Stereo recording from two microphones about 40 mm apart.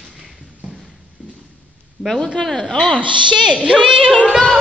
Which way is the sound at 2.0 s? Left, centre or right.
Centre.